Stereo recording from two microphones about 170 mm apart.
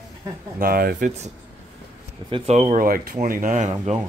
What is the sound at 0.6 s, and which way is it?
Speech, 60° right (ahead or behind).